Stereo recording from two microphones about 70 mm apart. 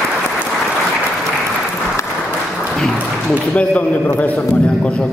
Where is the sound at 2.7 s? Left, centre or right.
Centre.